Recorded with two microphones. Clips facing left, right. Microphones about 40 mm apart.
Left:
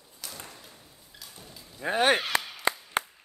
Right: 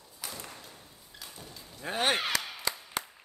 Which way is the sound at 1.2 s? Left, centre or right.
Centre.